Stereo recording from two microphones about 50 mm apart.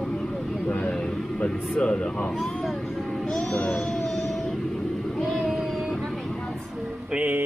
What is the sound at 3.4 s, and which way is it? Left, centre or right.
Music, centre.